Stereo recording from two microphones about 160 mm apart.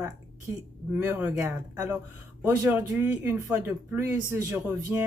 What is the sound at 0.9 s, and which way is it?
Speech, 10° right (ahead or behind).